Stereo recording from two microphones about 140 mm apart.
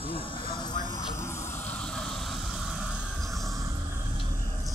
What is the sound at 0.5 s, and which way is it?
Vehicle, 30° left (ahead or behind).